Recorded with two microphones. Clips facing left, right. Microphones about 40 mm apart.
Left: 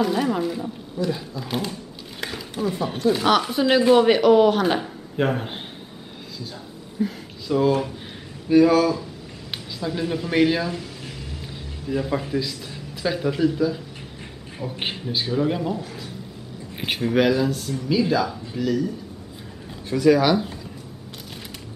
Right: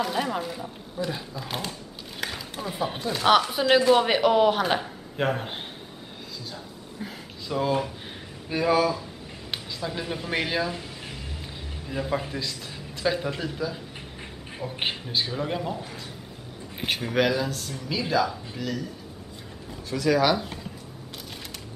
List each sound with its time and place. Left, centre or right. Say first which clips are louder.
0.0 s speech: left 5 dB; centre
11.9 s speech: left 5 dB; centre
16.7 s a sound: left 1 dB; centre
17.0 s speech: left 5 dB; centre
20.0 s speech: left 5 dB; centre